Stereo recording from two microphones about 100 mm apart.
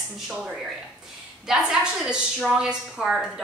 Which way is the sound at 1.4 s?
5° right (ahead or behind).